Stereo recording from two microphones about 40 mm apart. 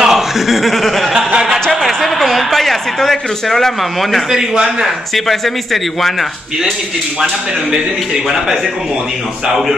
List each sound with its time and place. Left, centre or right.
0.0 s speech: centre
1.1 s a sound: right
1.7 s a woman's voice: centre
4.3 s a man's voice: centre
5.1 s speech: centre